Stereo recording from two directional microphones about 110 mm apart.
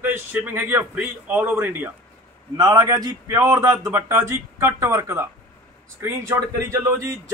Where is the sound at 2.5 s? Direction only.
35° right (ahead or behind).